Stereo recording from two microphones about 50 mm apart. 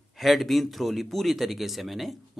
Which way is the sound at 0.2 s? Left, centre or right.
Centre.